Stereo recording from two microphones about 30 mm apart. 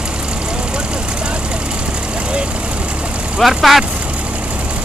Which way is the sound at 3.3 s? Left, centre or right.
Centre.